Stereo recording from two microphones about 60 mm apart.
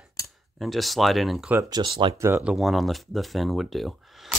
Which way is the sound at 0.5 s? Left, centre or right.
Centre.